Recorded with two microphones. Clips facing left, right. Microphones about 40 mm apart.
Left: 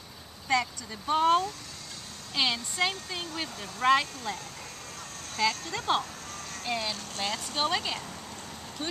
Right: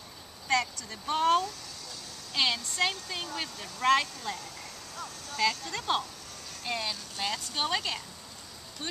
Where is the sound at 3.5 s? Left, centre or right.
Left.